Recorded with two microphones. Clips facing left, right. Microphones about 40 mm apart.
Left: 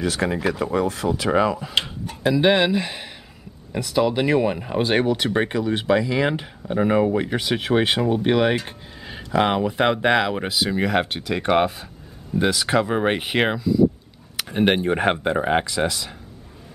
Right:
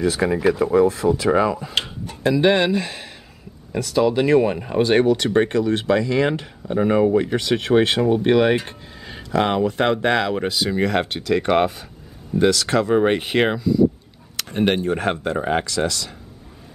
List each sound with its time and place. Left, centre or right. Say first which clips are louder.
0.0 s speech: right 4 dB; centre
14.3 s speech: even; centre